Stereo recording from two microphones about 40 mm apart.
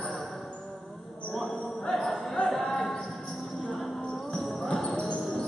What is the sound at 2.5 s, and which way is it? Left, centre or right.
Music, centre.